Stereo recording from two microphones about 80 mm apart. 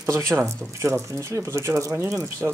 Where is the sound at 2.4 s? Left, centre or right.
Right.